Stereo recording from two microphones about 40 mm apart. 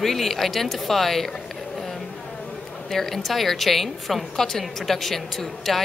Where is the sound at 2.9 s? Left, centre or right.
Centre.